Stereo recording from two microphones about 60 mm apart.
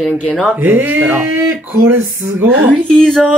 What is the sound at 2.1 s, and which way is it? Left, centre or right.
Speech, right.